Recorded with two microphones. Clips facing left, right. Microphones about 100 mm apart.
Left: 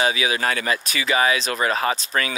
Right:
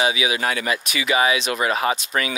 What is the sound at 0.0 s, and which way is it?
Speech, 40° left (ahead or behind).